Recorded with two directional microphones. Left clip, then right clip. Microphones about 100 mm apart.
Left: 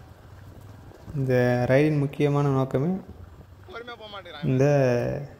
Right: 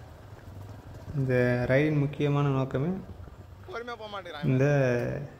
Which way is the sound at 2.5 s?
40° left (ahead or behind).